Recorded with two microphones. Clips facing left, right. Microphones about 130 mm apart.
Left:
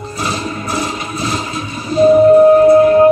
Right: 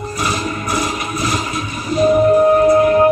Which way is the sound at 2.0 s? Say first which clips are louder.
Left 5 dB; 30° left (ahead or behind).